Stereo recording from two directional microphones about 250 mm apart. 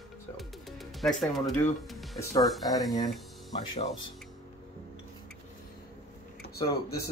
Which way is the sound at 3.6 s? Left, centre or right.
Centre.